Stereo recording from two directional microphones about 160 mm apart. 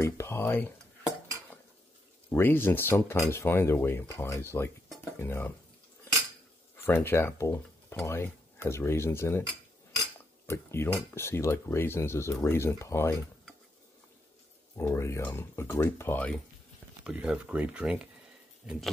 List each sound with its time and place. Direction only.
0.0 s speech: 15° left (ahead or behind)
2.2 s speech: 15° left (ahead or behind)
6.8 s speech: 15° left (ahead or behind)
10.4 s speech: 15° left (ahead or behind)
14.8 s speech: 15° left (ahead or behind)
17.0 s speech: 5° right (ahead or behind)
18.6 s pig: 5° right (ahead or behind)